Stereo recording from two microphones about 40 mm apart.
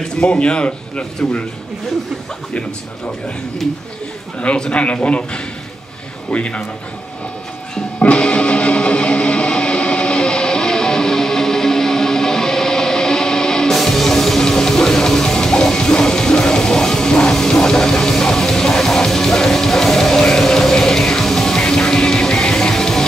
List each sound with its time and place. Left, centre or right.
0.2 s speech: left
4.6 s a man's voice: left
8.0 s music: left
13.7 s music: centre